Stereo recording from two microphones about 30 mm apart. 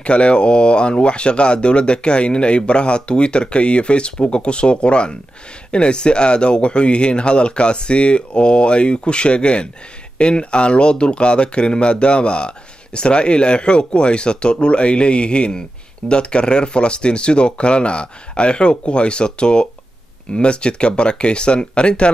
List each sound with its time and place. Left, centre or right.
0.0 s speech: left